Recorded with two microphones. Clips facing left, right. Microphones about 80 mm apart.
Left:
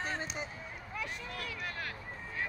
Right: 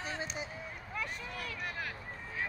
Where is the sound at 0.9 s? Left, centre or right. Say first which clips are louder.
Right 1 dB; right.